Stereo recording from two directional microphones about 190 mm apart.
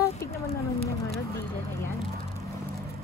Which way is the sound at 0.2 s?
15° left (ahead or behind).